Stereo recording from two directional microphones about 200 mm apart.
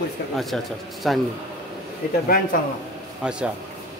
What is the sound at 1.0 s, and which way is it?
Speech, centre (ahead or behind).